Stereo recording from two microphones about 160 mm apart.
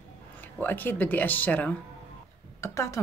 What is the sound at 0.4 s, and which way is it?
Speech, 10° left (ahead or behind).